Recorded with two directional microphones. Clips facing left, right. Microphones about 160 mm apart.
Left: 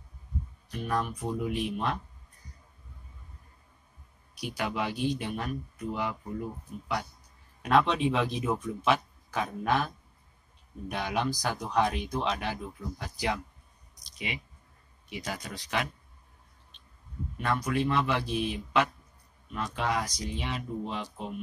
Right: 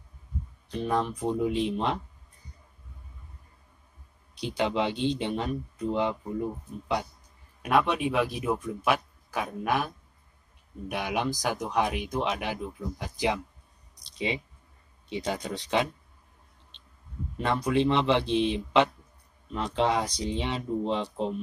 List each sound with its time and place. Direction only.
0.7 s speech: 25° right (ahead or behind)
4.4 s speech: 25° right (ahead or behind)
7.6 s speech: 10° right (ahead or behind)
14.0 s a sound: 25° right (ahead or behind)
15.0 s speech: 25° right (ahead or behind)
17.4 s speech: 25° right (ahead or behind)